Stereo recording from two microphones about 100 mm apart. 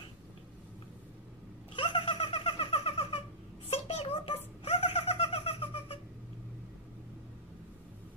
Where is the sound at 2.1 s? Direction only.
70° left (ahead or behind).